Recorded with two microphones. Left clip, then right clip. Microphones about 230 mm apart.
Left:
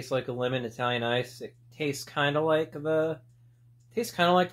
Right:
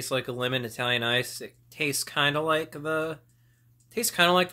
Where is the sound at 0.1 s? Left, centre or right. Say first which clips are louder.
Right 1 dB; centre.